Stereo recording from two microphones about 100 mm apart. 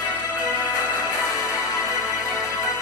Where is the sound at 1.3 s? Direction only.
35° left (ahead or behind).